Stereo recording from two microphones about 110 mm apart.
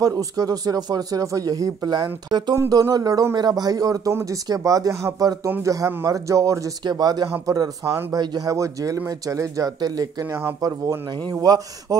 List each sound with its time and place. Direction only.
0.0 s speech: 35° right (ahead or behind)